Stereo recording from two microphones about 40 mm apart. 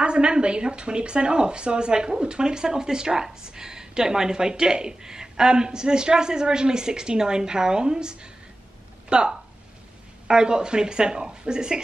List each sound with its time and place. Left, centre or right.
0.0 s speech: right